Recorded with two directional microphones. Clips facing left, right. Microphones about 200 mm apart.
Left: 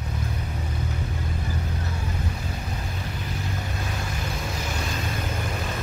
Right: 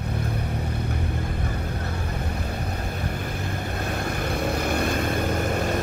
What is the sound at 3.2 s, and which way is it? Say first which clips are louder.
Vehicle: right 2 dB; 55° right (ahead or behind).